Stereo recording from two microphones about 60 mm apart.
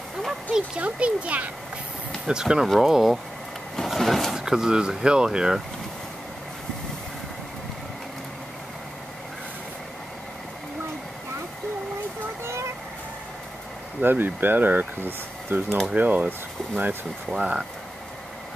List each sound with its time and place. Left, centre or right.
0.5 s speech: centre
3.7 s vehicle: centre
4.3 s speech: centre
14.0 s speech: right
15.9 s speech: right